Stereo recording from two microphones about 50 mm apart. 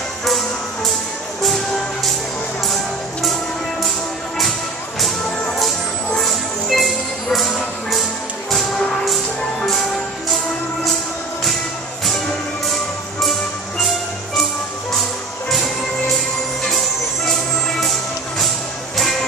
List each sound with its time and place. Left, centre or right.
0.2 s music: centre
2.6 s music: centre
5.6 s music: centre
10.3 s music: centre
13.2 s music: centre
15.5 s music: centre
18.9 s music: centre